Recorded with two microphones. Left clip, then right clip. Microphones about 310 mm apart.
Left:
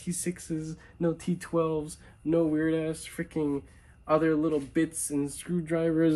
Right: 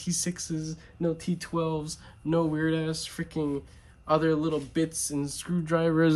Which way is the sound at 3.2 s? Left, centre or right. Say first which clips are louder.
Left 3 dB; centre.